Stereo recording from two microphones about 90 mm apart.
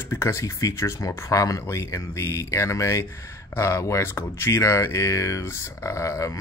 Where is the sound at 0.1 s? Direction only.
30° left (ahead or behind).